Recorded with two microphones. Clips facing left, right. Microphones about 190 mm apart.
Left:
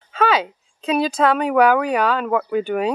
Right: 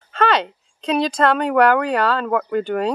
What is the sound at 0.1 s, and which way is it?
A woman's voice, 5° left (ahead or behind).